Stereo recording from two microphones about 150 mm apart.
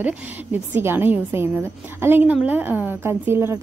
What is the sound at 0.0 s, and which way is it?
A woman's voice, 10° right (ahead or behind).